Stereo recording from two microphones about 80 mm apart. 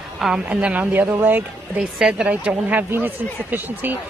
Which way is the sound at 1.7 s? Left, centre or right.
Centre.